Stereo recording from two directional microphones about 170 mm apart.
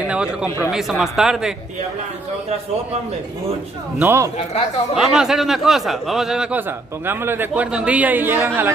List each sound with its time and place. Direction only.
0.0 s a man's voice: 5° right (ahead or behind)
4.0 s a man's voice: 15° right (ahead or behind)
4.9 s a man's voice: 5° right (ahead or behind)